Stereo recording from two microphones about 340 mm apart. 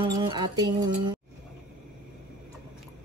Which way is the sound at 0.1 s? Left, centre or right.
Centre.